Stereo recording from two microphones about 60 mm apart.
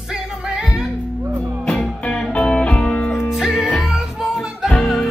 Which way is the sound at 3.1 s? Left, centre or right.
Centre.